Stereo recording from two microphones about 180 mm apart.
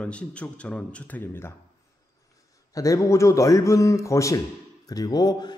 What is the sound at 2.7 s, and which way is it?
A man's voice, 20° left (ahead or behind).